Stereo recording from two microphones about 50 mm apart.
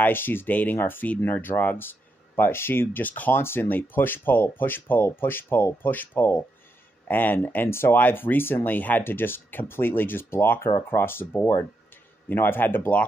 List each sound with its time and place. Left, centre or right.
0.0 s speech: left
0.5 s speech: left
7.7 s speech: left
8.0 s speech: left
12.3 s speech: left